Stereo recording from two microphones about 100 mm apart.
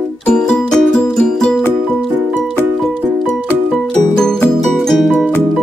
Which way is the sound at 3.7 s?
5° left (ahead or behind).